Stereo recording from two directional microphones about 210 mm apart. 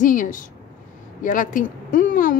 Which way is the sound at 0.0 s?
40° left (ahead or behind).